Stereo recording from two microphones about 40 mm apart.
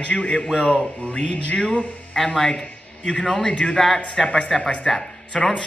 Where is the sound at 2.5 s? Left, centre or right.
Left.